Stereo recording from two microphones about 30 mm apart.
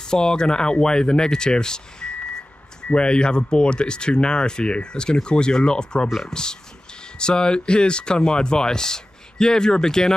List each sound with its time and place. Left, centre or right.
0.0 s speech: left